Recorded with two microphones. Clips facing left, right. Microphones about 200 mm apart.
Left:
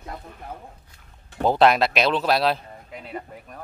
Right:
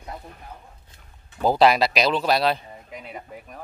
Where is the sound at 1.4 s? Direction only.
Centre (ahead or behind).